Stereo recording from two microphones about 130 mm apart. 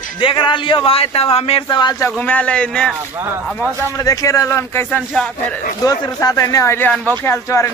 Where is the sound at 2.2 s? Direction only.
10° left (ahead or behind).